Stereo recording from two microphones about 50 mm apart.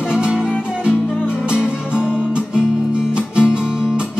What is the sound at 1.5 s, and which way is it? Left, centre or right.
Music, centre.